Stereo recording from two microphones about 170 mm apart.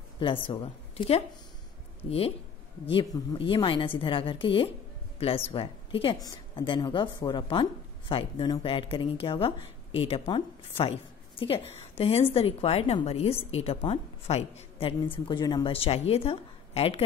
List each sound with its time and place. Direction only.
0.2 s a woman's voice: 30° left (ahead or behind)
15.2 s a woman's voice: 25° left (ahead or behind)